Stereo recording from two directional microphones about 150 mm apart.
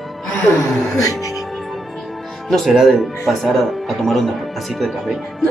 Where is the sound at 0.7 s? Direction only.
5° left (ahead or behind).